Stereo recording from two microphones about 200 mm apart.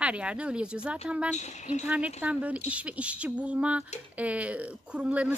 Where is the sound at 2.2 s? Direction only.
5° right (ahead or behind).